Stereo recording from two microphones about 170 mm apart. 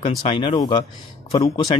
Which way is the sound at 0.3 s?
30° left (ahead or behind).